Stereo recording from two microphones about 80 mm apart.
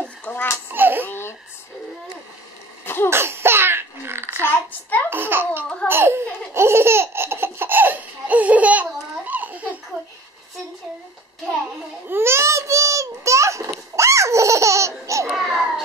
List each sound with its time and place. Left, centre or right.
0.0 s babbling: centre
0.7 s a sound: right
1.0 s babbling: left
2.8 s cough: left
3.1 s laughter: right
4.4 s a sound: left
5.1 s babbling: right
5.9 s laughter: right
12.1 s babbling: right
15.2 s a sound: centre